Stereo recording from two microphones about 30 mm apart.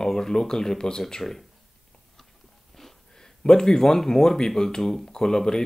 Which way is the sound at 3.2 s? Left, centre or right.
Left.